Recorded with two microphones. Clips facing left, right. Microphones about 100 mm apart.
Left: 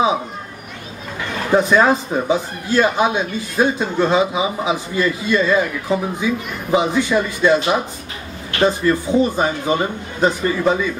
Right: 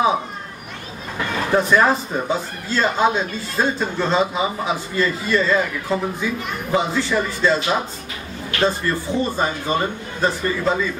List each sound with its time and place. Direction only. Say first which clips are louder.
1.5 s speech: left 3 dB; 20° left (ahead or behind)